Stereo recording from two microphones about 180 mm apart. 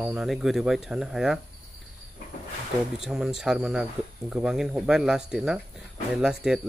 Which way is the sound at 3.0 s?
5° right (ahead or behind).